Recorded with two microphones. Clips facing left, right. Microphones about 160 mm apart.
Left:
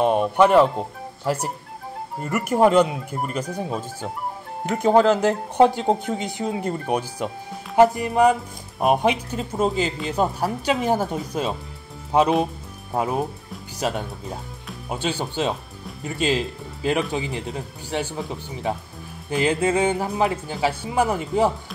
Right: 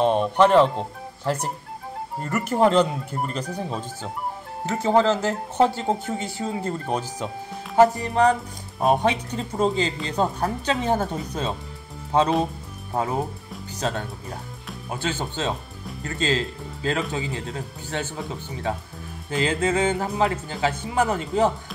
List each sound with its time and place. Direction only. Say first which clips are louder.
0.0 s speech: left 1 dB; 10° left (ahead or behind)